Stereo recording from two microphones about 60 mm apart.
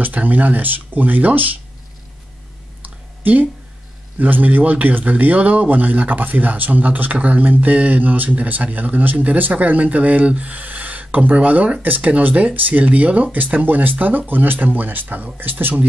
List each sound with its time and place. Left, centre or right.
0.0 s speech: right
2.8 s clicking: right
4.2 s speech: right